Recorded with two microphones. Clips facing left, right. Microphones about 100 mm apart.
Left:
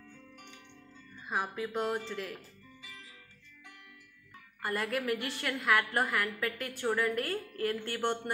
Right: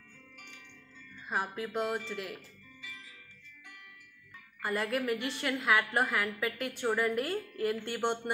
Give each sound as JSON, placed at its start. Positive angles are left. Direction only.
{"t": 1.3, "sound": "a woman's voice", "side_deg": 0}
{"t": 4.6, "sound": "a woman's voice", "side_deg": 0}